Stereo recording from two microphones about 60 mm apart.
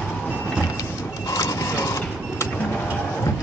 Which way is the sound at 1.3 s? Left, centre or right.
Left.